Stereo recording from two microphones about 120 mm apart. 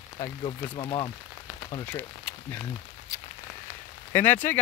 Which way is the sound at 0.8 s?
40° left (ahead or behind).